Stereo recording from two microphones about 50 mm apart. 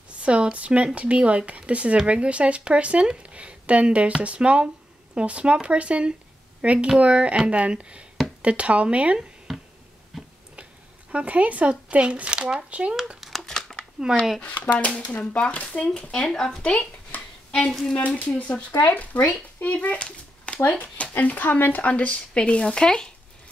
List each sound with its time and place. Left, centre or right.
0.2 s speech: right
10.1 s tick-tock: centre
10.5 s speech: right
13.2 s crumpling: centre
13.5 s a sound: centre
14.0 s speech: centre
14.4 s speech: left; by 16.5 s centre
17.1 s a sound: left
17.6 s speech: centre
17.9 s speech: left
20.6 s speech: left; by 23.1 s centre